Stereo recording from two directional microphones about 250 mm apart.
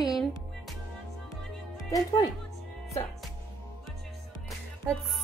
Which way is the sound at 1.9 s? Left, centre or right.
Centre.